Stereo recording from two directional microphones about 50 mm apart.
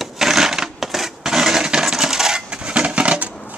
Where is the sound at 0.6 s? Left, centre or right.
Centre; by 3.3 s right.